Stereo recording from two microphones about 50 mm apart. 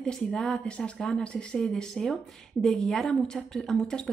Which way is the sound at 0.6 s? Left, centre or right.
Left.